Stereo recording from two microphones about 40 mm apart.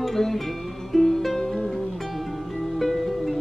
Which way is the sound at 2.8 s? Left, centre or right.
Centre.